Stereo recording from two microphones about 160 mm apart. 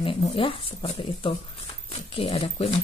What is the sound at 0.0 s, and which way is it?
Speech, 35° left (ahead or behind).